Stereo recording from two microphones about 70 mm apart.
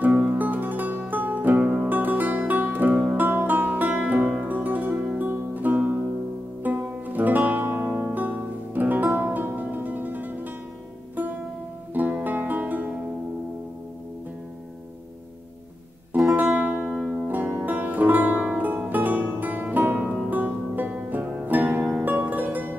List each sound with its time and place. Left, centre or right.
0.0 s music: right
11.9 s music: right
16.3 s music: right
16.9 s music: centre
17.3 s music: right